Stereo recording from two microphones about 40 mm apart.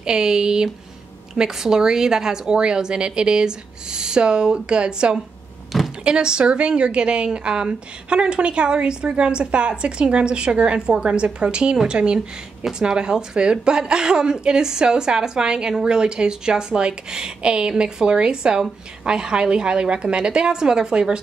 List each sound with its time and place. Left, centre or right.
0.0 s a woman's voice: centre
5.7 s door: centre
6.0 s a woman's voice: right